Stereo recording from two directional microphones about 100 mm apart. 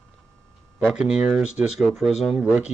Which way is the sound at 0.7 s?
5° right (ahead or behind).